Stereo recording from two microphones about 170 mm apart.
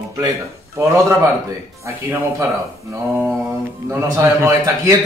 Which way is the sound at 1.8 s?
15° right (ahead or behind).